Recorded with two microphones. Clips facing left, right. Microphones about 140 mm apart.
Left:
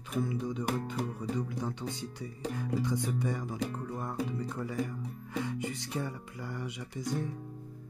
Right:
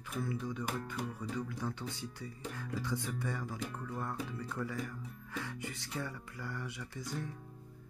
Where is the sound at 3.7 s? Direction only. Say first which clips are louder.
Left 5 dB; 30° left (ahead or behind).